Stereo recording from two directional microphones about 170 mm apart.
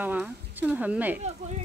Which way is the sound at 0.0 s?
10° right (ahead or behind).